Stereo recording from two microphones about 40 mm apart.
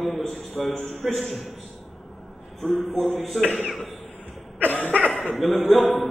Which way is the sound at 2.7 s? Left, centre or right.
Centre.